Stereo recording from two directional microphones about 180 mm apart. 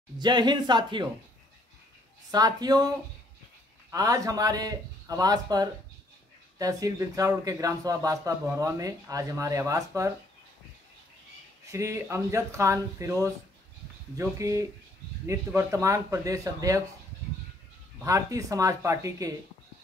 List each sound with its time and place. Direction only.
0.2 s speech: 25° right (ahead or behind)
2.3 s speech: 20° right (ahead or behind)
3.9 s a man's voice: 20° right (ahead or behind)
11.6 s a man's voice: 15° right (ahead or behind)
18.0 s a man's voice: 20° right (ahead or behind)